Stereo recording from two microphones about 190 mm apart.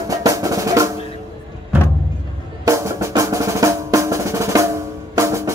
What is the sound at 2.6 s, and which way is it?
Drum, 15° right (ahead or behind).